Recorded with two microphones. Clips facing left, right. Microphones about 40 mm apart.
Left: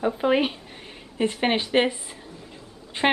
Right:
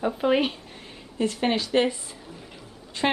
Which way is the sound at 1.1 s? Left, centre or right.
Left.